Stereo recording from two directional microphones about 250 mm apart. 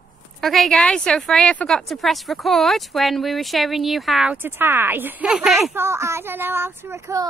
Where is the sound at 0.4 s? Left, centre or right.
Centre.